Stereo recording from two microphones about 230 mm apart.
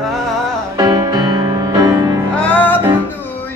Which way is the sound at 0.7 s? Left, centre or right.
Centre.